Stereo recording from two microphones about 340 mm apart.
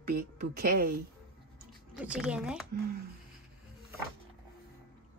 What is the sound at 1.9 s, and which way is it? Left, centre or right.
Speech, centre.